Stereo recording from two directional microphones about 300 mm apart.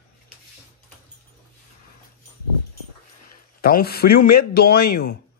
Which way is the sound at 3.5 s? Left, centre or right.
Left.